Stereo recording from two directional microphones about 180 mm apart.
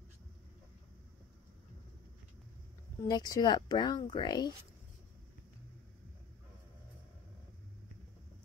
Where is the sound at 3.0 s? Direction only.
20° left (ahead or behind).